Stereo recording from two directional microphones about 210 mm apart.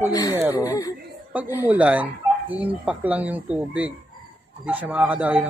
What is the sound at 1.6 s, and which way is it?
Speech, 5° right (ahead or behind).